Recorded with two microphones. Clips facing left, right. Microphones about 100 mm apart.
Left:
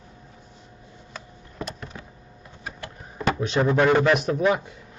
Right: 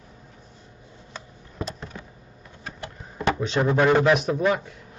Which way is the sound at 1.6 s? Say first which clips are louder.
Right 1 dB; 30° right (ahead or behind).